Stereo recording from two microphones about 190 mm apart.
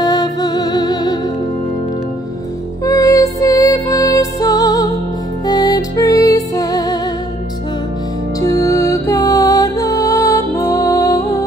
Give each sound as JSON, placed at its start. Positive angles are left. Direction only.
{"t": 0.0, "sound": "music", "side_deg": 20}
{"t": 2.8, "sound": "music", "side_deg": 15}
{"t": 8.4, "sound": "music", "side_deg": 15}